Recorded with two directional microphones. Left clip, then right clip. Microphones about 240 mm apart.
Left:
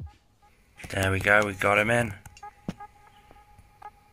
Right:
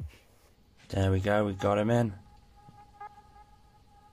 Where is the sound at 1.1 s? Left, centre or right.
Right.